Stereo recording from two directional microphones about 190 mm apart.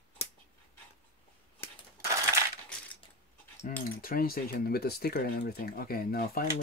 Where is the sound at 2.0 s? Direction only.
15° right (ahead or behind).